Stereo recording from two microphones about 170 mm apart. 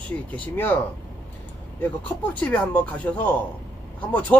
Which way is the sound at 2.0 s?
10° left (ahead or behind).